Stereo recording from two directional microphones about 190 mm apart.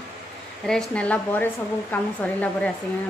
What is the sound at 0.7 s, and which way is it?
Speech, 5° left (ahead or behind).